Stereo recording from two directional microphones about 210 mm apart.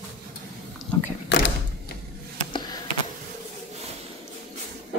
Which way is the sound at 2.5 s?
20° left (ahead or behind).